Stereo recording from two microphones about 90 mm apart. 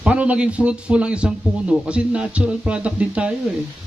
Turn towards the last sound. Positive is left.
turn(degrees=-10)  # may be behind; listen again after turning